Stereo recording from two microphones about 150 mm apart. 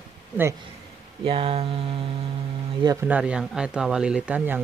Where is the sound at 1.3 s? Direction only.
40° right (ahead or behind).